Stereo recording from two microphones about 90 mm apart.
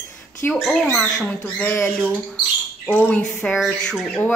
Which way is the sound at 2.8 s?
20° left (ahead or behind).